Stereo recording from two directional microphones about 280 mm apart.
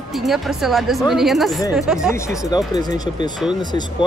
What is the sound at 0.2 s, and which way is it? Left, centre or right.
A woman's voice, centre.